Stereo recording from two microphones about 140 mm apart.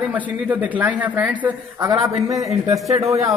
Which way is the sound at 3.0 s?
50° right (ahead or behind).